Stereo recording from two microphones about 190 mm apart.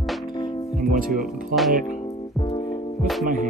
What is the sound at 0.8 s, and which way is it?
Speech, 45° right (ahead or behind).